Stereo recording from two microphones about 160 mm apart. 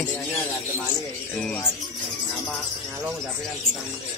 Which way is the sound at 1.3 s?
5° left (ahead or behind).